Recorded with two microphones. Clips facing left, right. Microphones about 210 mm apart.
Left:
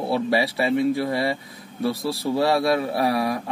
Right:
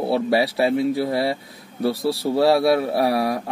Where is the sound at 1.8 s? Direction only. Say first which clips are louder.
Right 3 dB; 30° right (ahead or behind).